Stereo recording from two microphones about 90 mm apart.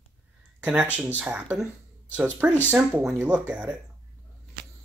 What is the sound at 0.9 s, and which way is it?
Speech, 20° right (ahead or behind).